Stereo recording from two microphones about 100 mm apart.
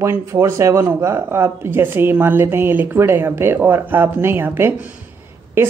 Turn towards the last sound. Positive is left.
turn(degrees=-20)  # may be behind; listen again after turning